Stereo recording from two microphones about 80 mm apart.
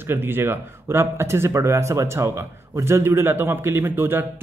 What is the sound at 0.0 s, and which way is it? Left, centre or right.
Speech, right.